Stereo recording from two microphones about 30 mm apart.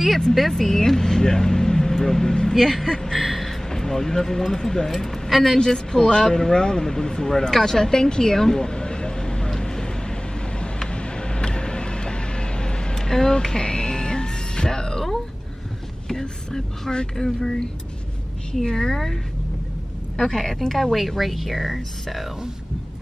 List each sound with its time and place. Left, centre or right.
0.5 s speech: centre
3.2 s speech: centre
3.6 s speech: centre
5.7 s speech: left
10.6 s a sound: left
12.9 s music: centre
16.1 s a sound: centre
17.2 s speech: centre
20.2 s speech: centre